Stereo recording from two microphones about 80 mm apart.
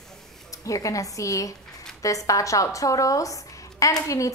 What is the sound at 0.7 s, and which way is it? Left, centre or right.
A woman's voice, left.